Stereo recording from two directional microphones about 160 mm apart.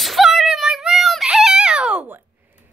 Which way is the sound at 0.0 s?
Centre (ahead or behind).